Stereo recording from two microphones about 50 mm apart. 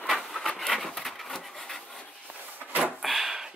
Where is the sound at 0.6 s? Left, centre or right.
Centre.